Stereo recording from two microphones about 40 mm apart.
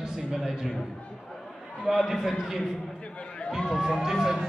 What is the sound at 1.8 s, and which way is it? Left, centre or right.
Speech, centre.